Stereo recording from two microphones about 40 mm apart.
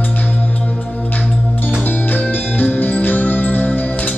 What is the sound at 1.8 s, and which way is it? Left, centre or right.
Music, left.